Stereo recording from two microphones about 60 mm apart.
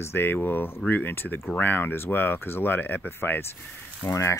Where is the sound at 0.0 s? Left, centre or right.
Left.